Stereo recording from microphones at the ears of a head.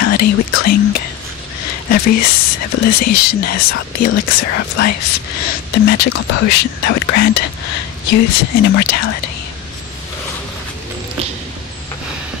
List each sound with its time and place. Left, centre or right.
0.0 s speech: left